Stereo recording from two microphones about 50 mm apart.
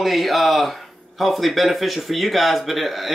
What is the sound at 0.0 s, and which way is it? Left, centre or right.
A man's voice, centre.